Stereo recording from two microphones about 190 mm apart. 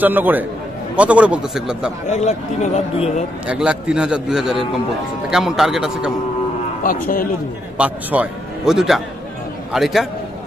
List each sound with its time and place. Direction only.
0.0 s a man's voice: 10° right (ahead or behind)
2.0 s a man's voice: 40° left (ahead or behind)
3.4 s a man's voice: 5° right (ahead or behind)
6.8 s a man's voice: 50° left (ahead or behind)
7.7 s a man's voice: 5° right (ahead or behind)